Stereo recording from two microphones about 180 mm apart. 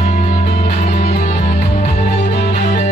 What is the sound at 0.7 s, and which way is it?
Music, 40° left (ahead or behind).